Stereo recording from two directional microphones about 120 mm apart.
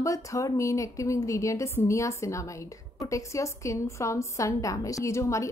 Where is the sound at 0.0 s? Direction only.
25° left (ahead or behind).